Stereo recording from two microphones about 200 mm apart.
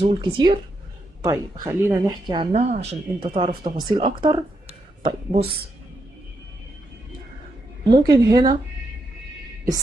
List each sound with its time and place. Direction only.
0.0 s speech: 20° right (ahead or behind)
2.5 s speech: 35° right (ahead or behind)
4.2 s a sound: 25° right (ahead or behind)
7.9 s speech: 20° right (ahead or behind)